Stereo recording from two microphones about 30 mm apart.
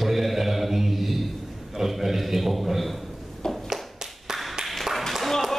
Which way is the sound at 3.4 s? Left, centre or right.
Left.